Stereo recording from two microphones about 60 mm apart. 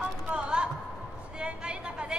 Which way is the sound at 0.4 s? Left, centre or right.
Centre.